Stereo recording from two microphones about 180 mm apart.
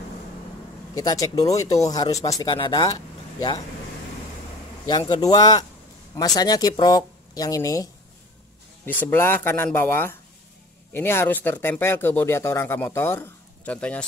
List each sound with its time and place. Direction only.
0.9 s speech: 20° left (ahead or behind)
4.8 s speech: 25° left (ahead or behind); by 14.0 s 5° left (ahead or behind)